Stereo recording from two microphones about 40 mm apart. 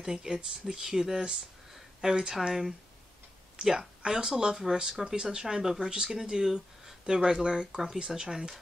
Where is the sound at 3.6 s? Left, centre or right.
Centre.